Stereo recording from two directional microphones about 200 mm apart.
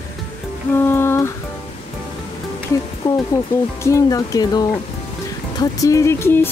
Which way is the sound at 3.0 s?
20° left (ahead or behind).